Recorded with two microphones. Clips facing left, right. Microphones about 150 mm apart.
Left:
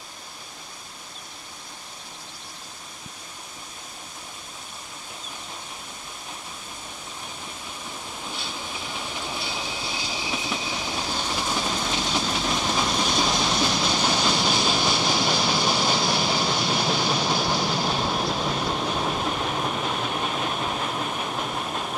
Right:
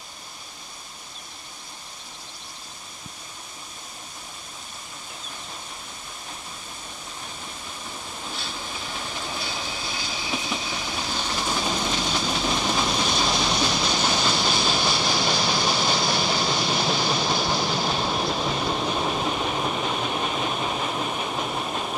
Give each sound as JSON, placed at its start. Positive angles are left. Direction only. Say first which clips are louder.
{"t": 8.2, "sound": "train", "louder": "even", "side_deg": 15}